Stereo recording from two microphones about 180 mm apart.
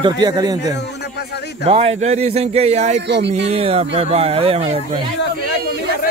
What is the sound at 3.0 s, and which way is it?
Speech, 75° right (ahead or behind).